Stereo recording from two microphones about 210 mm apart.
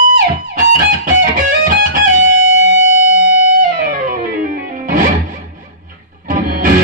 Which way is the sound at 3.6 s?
40° right (ahead or behind).